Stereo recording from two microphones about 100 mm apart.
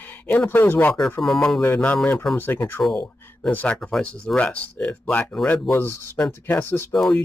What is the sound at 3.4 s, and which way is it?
Speech, 15° left (ahead or behind).